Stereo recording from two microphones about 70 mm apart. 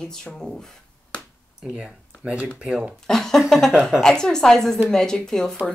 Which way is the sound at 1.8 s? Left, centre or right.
Centre.